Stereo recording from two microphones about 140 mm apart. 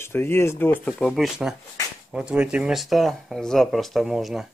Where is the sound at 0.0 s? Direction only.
15° left (ahead or behind).